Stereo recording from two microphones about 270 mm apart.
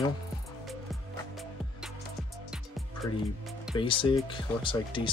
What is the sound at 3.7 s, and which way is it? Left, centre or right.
Speech, centre.